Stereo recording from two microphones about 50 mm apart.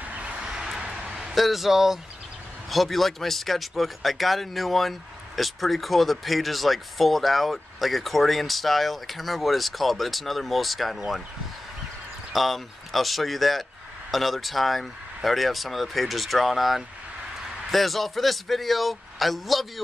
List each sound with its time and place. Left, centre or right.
0.0 s vehicle: right
0.5 s a sound: centre
1.3 s speech: centre
12.3 s speech: centre